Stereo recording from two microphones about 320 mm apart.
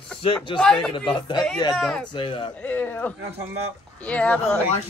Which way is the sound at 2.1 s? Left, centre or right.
Centre.